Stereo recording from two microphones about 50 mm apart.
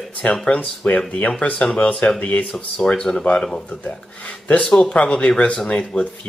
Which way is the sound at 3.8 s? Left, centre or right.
Left.